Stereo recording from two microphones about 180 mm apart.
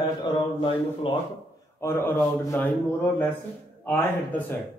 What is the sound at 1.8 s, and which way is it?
A man's voice, 15° left (ahead or behind).